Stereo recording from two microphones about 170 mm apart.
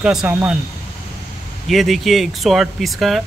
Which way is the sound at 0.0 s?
5° right (ahead or behind).